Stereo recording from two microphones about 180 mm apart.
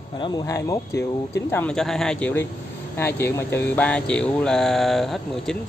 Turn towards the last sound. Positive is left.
turn(degrees=0)  # may be behind; listen again after turning